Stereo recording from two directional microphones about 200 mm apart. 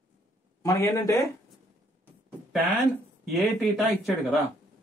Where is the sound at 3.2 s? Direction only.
Centre (ahead or behind).